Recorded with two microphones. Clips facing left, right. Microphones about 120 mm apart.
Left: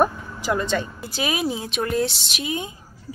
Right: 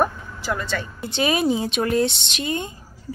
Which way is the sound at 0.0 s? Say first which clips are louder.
Left 2 dB; 15° left (ahead or behind).